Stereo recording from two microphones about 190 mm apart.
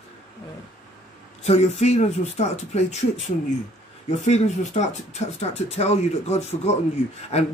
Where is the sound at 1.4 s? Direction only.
35° left (ahead or behind).